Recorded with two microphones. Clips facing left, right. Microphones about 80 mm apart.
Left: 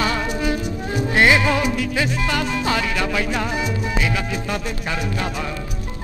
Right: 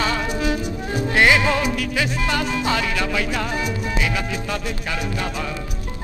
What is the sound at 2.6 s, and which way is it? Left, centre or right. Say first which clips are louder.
Salsa music: left 1 dB; left.